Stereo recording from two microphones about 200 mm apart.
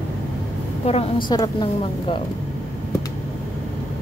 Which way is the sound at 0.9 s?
25° left (ahead or behind).